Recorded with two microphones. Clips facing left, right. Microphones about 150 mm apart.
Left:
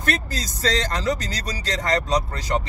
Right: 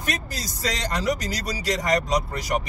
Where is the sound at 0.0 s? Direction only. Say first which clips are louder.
Left 4 dB; 10° right (ahead or behind).